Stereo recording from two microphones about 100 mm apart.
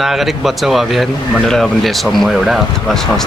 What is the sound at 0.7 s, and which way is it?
Speech, centre (ahead or behind).